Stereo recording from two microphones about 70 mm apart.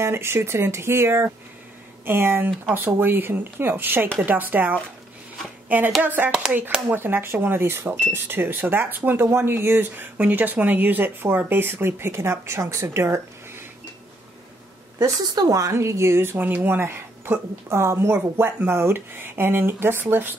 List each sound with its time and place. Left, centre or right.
0.0 s speech: right
10.1 s speech: right
15.2 s speech: right
15.7 s speech: right